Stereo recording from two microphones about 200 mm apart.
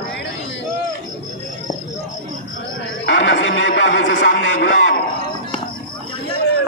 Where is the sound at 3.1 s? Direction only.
65° left (ahead or behind).